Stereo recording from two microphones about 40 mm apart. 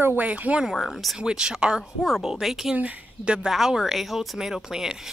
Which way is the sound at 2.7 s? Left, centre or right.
Right.